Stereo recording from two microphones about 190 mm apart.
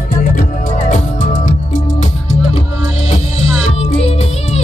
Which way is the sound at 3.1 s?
35° left (ahead or behind).